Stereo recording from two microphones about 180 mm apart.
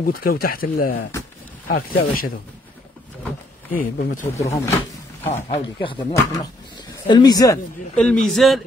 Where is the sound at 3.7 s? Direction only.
50° left (ahead or behind).